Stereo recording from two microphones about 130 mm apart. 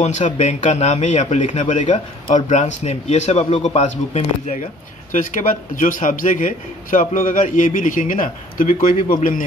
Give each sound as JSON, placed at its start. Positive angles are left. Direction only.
{"t": 0.0, "sound": "a man's voice", "side_deg": 60}
{"t": 5.1, "sound": "a man's voice", "side_deg": 85}